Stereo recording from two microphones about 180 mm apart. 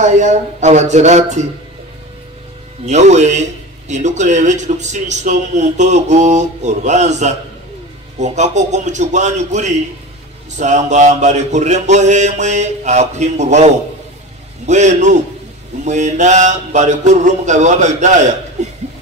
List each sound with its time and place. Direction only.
0.0 s a man's voice: 40° right (ahead or behind)
2.8 s a man's voice: 40° right (ahead or behind)